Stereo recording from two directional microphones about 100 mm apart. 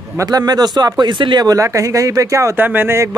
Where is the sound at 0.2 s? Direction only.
40° right (ahead or behind).